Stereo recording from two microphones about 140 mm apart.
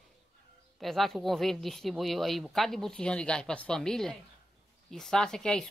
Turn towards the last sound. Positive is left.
turn(degrees=5)  # may be behind; listen again after turning